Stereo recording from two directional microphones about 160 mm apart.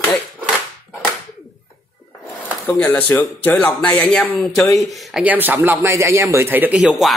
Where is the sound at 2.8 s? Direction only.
10° left (ahead or behind).